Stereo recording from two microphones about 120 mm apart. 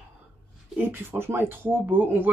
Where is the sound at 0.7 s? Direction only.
15° right (ahead or behind).